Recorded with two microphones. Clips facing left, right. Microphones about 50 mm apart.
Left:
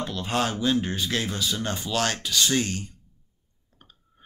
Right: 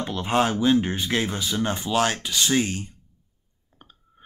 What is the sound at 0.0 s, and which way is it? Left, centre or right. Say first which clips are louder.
Speech: right 4 dB; right.